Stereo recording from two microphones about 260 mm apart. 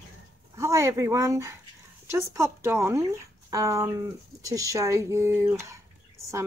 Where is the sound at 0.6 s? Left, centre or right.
Centre.